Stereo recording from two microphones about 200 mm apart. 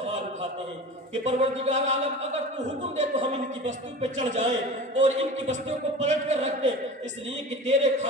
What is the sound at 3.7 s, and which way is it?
A man's voice, 35° right (ahead or behind).